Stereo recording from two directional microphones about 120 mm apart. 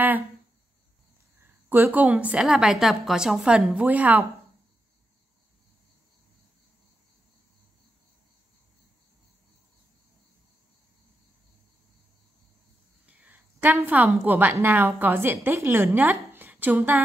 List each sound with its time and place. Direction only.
1.7 s a woman's voice: 15° right (ahead or behind)
13.0 s a woman's voice: 10° right (ahead or behind)